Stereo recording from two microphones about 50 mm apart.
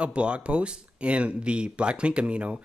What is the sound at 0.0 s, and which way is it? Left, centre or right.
Speech, right.